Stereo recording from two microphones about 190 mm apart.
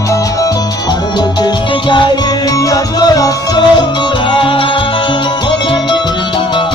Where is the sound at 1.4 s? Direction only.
25° left (ahead or behind).